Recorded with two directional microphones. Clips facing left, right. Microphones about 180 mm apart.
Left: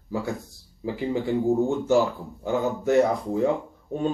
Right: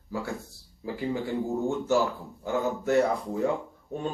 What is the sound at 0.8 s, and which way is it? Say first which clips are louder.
Speech: left 4 dB; 20° left (ahead or behind).